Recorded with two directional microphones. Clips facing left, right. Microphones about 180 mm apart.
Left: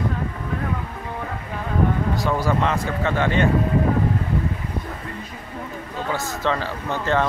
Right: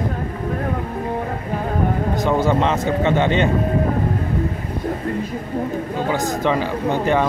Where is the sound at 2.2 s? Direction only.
25° right (ahead or behind).